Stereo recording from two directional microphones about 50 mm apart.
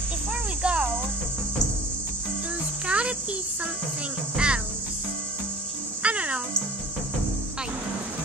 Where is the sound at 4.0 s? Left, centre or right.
Right.